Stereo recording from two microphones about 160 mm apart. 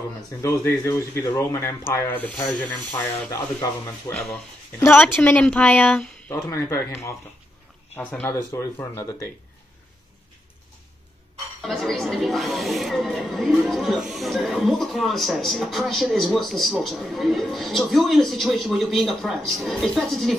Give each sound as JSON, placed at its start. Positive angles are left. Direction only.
{"t": 0.4, "sound": "speech", "side_deg": 20}
{"t": 6.3, "sound": "speech", "side_deg": 15}
{"t": 11.6, "sound": "speech", "side_deg": 0}